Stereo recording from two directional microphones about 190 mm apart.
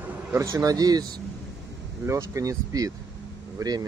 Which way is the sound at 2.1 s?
15° right (ahead or behind).